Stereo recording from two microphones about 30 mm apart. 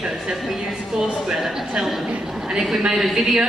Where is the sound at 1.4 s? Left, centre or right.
Centre.